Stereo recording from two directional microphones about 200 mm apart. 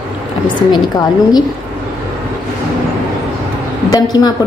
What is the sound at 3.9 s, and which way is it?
Speech, 20° left (ahead or behind).